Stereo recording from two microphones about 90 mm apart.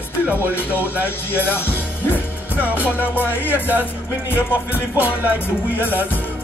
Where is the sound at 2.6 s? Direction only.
20° right (ahead or behind).